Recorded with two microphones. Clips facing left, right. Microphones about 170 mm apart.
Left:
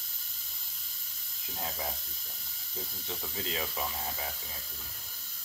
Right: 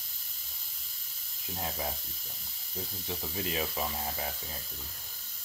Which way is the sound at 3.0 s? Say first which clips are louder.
Right 3 dB; 20° right (ahead or behind).